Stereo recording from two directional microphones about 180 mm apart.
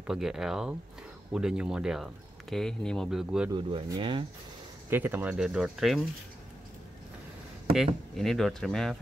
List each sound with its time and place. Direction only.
0.0 s speech: 5° right (ahead or behind)
3.4 s speech: 25° right (ahead or behind)
4.8 s speech: 10° right (ahead or behind)
7.7 s speech: centre (ahead or behind)